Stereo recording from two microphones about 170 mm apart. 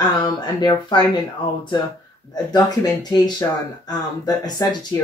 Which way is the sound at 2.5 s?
25° left (ahead or behind).